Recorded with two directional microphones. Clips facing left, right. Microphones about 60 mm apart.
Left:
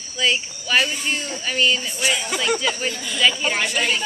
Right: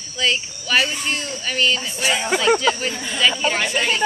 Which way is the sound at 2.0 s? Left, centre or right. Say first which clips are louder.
Right 3 dB; right.